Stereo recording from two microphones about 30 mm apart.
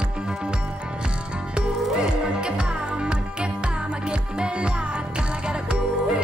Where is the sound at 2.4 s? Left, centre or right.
Right.